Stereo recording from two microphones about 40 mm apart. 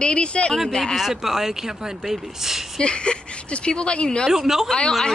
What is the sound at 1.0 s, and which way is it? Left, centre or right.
Speech, centre.